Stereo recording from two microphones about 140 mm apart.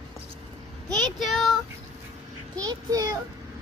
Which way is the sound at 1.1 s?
Centre (ahead or behind).